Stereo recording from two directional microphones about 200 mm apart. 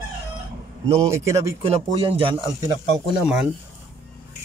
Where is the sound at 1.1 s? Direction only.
15° right (ahead or behind).